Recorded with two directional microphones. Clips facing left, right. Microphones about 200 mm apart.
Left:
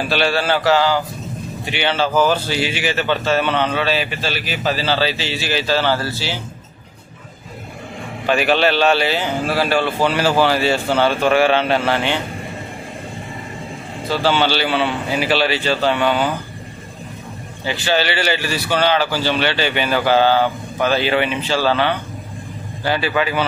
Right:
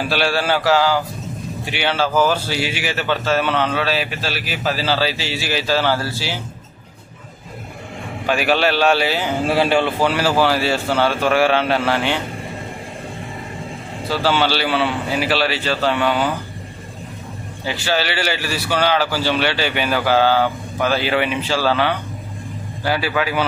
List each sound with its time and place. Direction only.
0.1 s speech: 10° right (ahead or behind)
8.3 s speech: 5° right (ahead or behind)
9.5 s a man's voice: 20° right (ahead or behind)
9.9 s a man's voice: 5° right (ahead or behind)
14.0 s a man's voice: 5° right (ahead or behind)
17.6 s speech: 5° right (ahead or behind)